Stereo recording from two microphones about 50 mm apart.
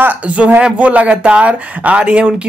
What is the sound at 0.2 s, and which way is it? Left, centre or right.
Speech, right.